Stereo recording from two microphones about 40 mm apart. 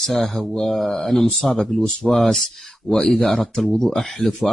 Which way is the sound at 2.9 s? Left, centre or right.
Centre.